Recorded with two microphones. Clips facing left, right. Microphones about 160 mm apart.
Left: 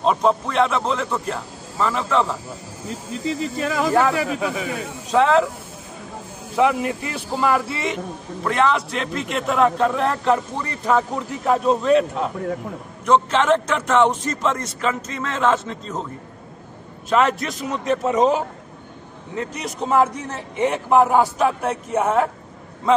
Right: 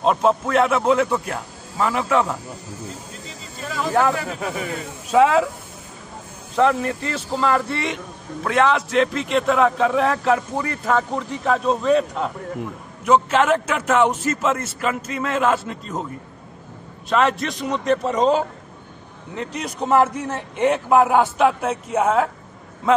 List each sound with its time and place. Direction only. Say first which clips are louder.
0.0 s a man's voice: even; centre (ahead or behind)
3.3 s speech: left 12 dB; 85° left
5.1 s a man's voice: right 1 dB; 10° right (ahead or behind)
6.5 s a man's voice: even; 10° left (ahead or behind); by 16.0 s 10° right (ahead or behind)
17.1 s a man's voice: even; centre (ahead or behind)
19.5 s a man's voice: right 2 dB; centre (ahead or behind)